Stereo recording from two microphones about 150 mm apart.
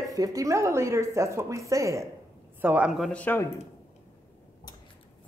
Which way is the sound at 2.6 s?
10° right (ahead or behind).